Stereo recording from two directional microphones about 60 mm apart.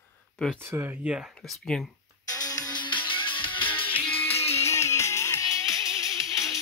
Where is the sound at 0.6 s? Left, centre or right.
Right.